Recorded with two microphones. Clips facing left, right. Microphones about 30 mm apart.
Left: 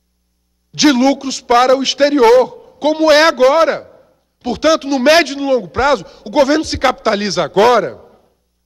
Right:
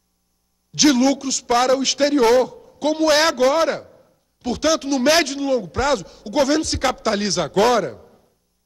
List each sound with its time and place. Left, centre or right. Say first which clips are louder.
0.7 s a man's voice: left 5 dB; left